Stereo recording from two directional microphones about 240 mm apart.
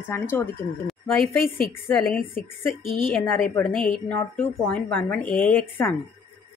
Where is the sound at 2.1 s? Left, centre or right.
Left.